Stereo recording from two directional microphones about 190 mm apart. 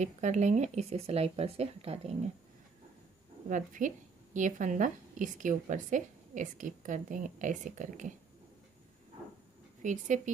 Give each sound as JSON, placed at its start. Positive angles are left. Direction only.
{"t": 0.0, "sound": "speech", "side_deg": -40}
{"t": 3.4, "sound": "a woman's voice", "side_deg": -45}
{"t": 9.8, "sound": "speech", "side_deg": -40}